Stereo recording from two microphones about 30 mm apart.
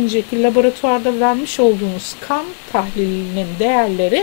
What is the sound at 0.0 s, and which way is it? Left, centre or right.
Speech, left.